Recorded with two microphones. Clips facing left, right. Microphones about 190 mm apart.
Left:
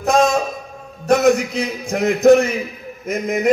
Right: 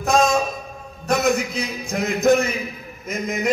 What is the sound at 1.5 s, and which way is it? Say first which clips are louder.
Speech: left 4 dB; 70° left (ahead or behind).